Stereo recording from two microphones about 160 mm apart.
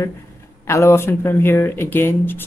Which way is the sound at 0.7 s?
15° left (ahead or behind).